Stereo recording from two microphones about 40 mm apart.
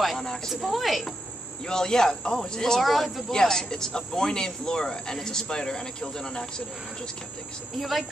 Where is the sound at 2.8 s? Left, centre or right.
Centre.